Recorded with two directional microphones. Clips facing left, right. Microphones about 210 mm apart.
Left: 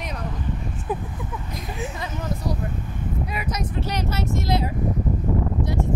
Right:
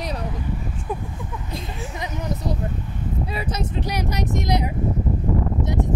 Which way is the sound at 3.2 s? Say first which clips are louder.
Right 1 dB; 30° right (ahead or behind).